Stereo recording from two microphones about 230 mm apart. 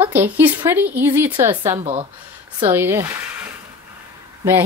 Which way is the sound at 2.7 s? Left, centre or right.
Centre.